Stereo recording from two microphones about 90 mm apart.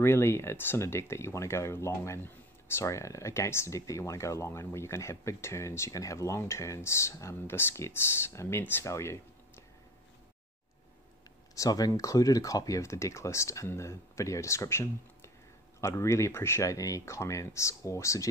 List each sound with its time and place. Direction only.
0.0 s speech: 25° left (ahead or behind)
11.5 s speech: 40° left (ahead or behind)